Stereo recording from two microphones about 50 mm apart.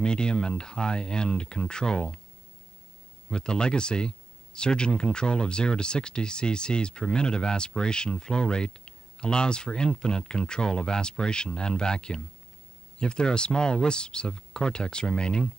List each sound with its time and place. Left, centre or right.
0.0 s speech: centre
3.3 s speech: centre